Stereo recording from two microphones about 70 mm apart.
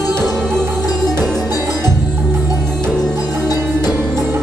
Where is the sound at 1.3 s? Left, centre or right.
Right.